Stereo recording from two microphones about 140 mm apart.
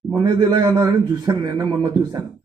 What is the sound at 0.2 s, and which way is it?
A man's voice, 25° right (ahead or behind).